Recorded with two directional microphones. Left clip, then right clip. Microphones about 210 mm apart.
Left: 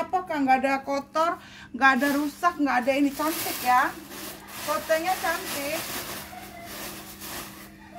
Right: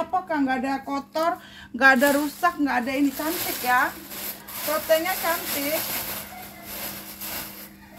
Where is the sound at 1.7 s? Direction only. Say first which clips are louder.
Right 4 dB; centre (ahead or behind).